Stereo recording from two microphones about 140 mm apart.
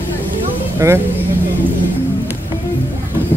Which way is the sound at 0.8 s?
20° right (ahead or behind).